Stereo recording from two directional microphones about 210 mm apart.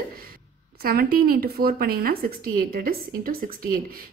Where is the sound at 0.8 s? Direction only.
45° right (ahead or behind).